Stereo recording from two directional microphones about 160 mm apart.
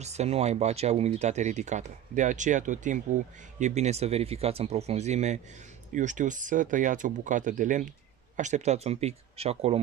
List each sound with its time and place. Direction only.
0.0 s speech: 45° right (ahead or behind)